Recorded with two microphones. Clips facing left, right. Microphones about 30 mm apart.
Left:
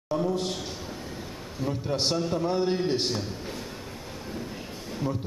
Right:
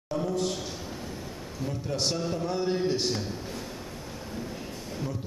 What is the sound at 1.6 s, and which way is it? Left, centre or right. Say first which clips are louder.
A man's voice: left 3 dB; centre.